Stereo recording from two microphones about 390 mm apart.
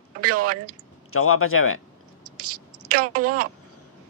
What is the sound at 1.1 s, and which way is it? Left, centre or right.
Speech, left.